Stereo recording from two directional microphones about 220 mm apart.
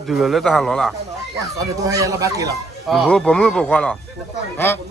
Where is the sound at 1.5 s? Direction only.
15° right (ahead or behind).